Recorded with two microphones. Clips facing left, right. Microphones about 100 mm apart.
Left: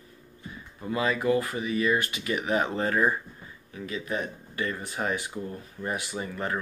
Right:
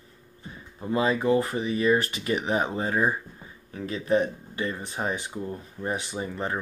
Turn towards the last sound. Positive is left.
turn(degrees=-25)  # may be behind; listen again after turning